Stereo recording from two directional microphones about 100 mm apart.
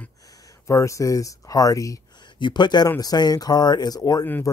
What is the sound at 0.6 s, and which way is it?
Speech, 30° left (ahead or behind).